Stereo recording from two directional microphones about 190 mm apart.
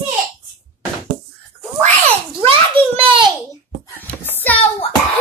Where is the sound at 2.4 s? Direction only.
30° right (ahead or behind).